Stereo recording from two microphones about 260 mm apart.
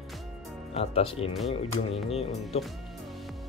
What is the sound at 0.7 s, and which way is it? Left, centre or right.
Speech, left.